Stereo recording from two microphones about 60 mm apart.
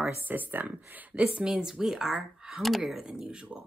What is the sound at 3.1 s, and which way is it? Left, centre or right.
Speech, centre.